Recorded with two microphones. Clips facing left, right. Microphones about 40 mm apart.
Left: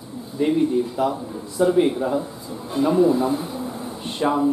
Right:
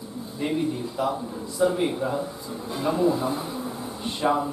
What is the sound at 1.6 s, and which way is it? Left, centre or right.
Speech, centre.